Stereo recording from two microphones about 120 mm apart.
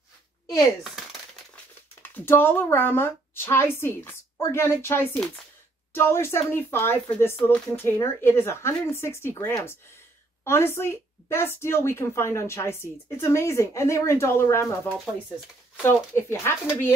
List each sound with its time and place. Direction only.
2.0 s speech: 15° left (ahead or behind)
5.1 s speech: 5° left (ahead or behind)
5.9 s speech: 20° left (ahead or behind)
15.8 s speech: 20° left (ahead or behind)